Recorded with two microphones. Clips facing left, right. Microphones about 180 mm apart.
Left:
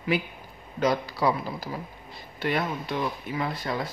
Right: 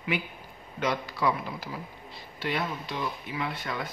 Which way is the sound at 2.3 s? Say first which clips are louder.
Left 4 dB; 50° left (ahead or behind).